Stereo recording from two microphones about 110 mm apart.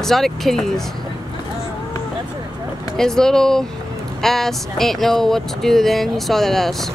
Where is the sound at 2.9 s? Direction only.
5° left (ahead or behind).